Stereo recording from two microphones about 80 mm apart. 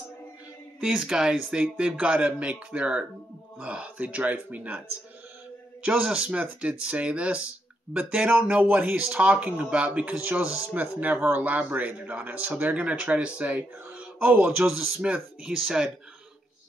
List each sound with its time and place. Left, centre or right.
0.7 s speech: centre
5.8 s speech: centre
8.8 s speech: centre